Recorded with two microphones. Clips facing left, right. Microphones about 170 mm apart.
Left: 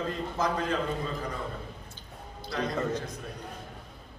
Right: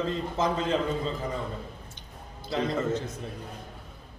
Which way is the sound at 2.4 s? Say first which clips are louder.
Right 3 dB; 25° right (ahead or behind).